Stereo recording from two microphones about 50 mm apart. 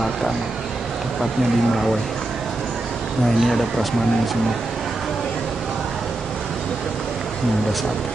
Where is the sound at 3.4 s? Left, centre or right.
Centre.